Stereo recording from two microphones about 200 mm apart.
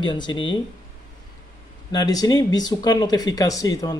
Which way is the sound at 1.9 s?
20° left (ahead or behind).